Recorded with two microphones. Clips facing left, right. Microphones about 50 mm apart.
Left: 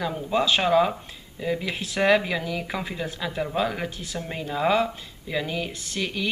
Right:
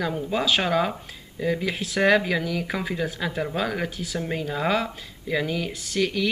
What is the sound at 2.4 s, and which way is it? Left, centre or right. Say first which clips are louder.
Speech: right 2 dB; centre.